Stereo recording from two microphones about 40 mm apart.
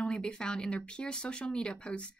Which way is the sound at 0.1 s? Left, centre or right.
Left.